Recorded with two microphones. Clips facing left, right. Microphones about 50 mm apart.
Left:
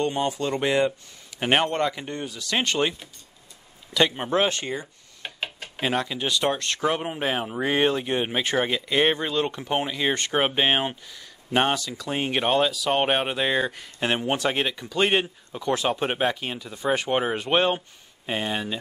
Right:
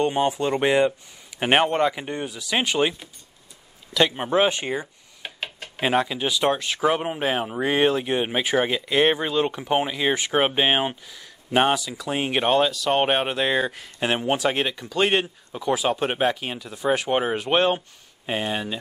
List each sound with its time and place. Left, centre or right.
0.0 s speech: right
5.2 s a sound: centre
5.8 s speech: centre